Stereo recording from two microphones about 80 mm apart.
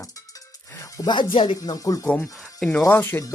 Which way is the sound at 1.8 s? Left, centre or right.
Left.